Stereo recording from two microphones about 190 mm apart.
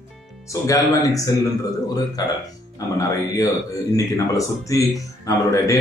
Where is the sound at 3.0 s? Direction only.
15° left (ahead or behind).